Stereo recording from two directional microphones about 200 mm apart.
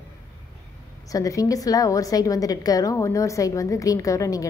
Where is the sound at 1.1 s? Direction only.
15° left (ahead or behind).